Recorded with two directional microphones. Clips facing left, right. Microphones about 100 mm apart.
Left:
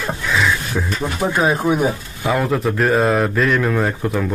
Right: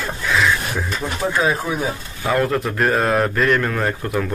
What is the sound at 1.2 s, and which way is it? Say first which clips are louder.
Speech: left 2 dB; 20° left (ahead or behind).